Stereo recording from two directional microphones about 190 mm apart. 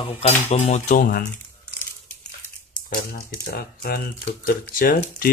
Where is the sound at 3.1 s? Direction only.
50° left (ahead or behind).